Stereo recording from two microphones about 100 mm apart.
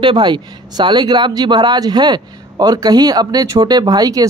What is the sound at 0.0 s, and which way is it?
Speech, 55° right (ahead or behind).